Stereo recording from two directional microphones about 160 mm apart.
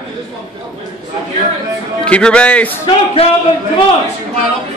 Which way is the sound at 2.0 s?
5° left (ahead or behind).